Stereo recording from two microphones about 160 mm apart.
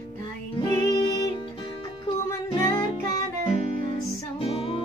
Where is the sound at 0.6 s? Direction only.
25° left (ahead or behind).